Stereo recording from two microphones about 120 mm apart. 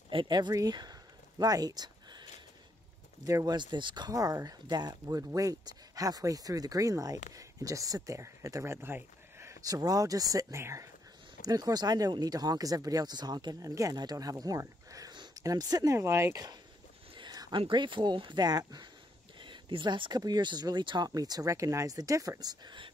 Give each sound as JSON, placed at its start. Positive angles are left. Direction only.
{"t": 0.1, "sound": "speech", "side_deg": -40}
{"t": 3.3, "sound": "speech", "side_deg": -30}
{"t": 17.1, "sound": "speech", "side_deg": -40}